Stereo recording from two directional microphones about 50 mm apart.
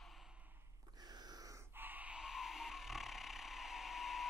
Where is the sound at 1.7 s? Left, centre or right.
Right.